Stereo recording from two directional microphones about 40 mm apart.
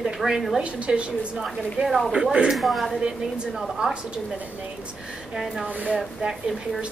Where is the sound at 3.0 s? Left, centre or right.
Centre.